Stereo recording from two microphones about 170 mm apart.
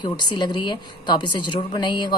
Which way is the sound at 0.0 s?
25° left (ahead or behind).